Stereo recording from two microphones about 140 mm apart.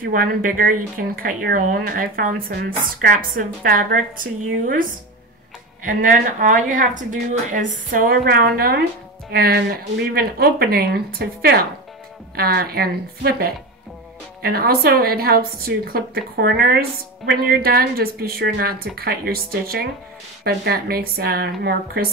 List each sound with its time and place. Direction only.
0.0 s speech: 85° right
5.9 s speech: 70° right (ahead or behind); by 22.1 s 90° right